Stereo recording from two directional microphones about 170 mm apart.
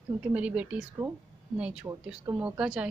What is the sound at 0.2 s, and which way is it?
Speech, 10° right (ahead or behind).